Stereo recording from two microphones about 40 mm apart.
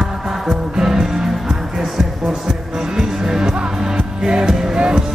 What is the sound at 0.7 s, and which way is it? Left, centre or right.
Music, centre.